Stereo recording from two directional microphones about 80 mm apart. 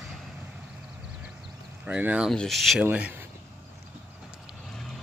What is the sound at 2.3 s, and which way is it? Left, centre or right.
Speech, centre.